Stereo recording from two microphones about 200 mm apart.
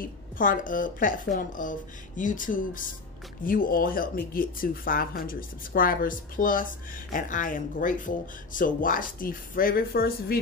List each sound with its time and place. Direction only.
0.4 s speech: 40° left (ahead or behind)